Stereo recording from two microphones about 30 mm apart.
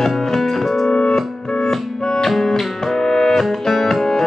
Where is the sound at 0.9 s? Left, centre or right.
Left.